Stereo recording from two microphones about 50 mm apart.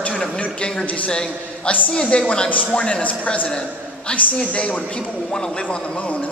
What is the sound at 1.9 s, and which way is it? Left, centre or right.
A man's voice, centre.